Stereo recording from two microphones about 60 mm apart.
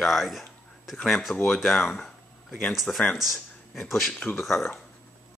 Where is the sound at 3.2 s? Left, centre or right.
Centre.